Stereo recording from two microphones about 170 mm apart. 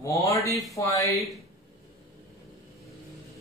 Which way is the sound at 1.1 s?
Centre (ahead or behind).